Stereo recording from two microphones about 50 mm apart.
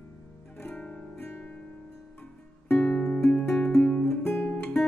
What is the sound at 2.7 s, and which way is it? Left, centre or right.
Music, centre.